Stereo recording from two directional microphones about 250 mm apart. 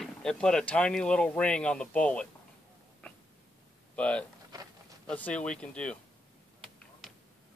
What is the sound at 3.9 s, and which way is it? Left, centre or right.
Speech, centre.